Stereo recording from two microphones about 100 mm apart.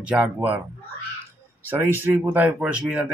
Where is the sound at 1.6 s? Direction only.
20° right (ahead or behind).